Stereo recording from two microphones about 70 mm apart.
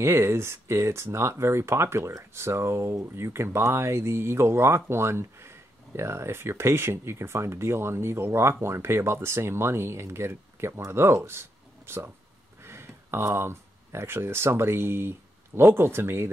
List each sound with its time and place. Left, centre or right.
0.0 s speech: right